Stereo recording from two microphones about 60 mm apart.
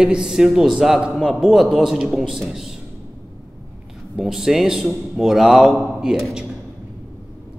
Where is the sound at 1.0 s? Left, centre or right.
Centre.